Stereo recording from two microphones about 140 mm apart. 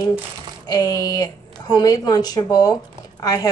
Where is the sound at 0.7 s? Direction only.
25° left (ahead or behind).